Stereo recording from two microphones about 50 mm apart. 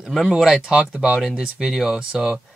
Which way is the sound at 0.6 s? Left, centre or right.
Centre.